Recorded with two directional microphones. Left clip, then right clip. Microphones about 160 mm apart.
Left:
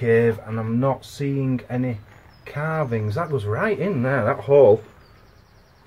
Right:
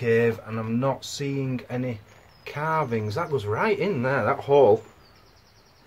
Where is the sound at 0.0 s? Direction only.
10° right (ahead or behind).